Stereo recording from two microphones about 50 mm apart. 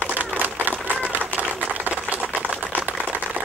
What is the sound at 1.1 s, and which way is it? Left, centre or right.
Typewriter, right.